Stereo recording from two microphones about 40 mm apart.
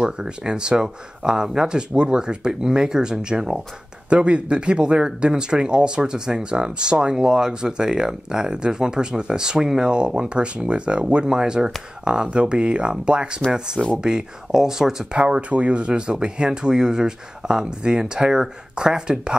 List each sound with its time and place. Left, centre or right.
0.0 s speech: centre
15.1 s speech: right